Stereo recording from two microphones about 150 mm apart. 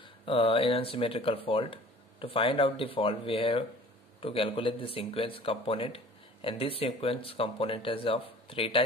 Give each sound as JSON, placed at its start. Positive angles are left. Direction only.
{"t": 0.2, "sound": "speech", "side_deg": 35}